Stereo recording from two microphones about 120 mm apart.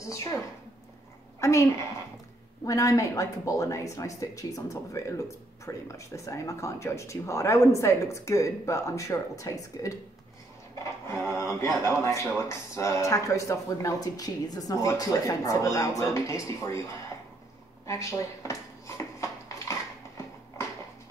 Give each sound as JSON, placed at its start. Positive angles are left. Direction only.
{"t": 0.0, "sound": "a woman's voice", "side_deg": 25}
{"t": 1.4, "sound": "a woman's voice", "side_deg": 25}
{"t": 11.1, "sound": "speech", "side_deg": 25}
{"t": 17.8, "sound": "dishes", "side_deg": 25}